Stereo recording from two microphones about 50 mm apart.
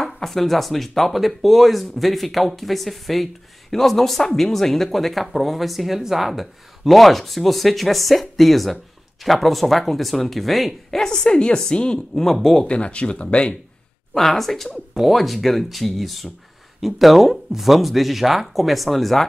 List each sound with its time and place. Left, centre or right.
0.0 s speech: centre
11.0 s a woman's voice: centre
12.3 s speech: centre
12.6 s speech: left
14.1 s speech: centre